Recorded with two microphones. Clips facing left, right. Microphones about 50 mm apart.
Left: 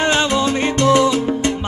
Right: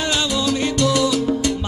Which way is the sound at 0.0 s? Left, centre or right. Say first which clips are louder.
Left 5 dB; left.